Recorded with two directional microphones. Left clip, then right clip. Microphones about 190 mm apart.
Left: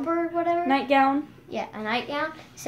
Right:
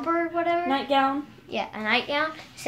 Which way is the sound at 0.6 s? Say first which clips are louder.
Left 2 dB; 25° left (ahead or behind).